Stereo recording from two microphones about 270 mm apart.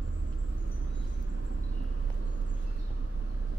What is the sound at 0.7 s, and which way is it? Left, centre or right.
Vehicle, right.